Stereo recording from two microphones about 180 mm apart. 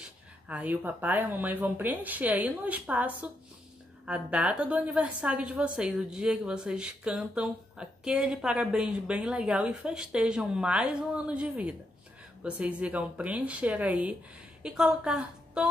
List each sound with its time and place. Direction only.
0.5 s a woman's voice: 10° right (ahead or behind)